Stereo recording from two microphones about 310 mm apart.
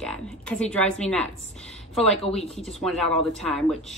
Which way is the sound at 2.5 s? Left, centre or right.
Centre.